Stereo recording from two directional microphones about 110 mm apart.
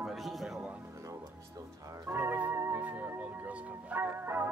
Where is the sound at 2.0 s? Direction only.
20° right (ahead or behind).